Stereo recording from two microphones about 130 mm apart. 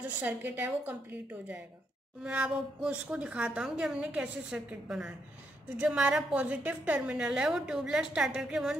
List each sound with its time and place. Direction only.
0.0 s a woman's voice: 15° right (ahead or behind)
2.2 s a woman's voice: 10° right (ahead or behind)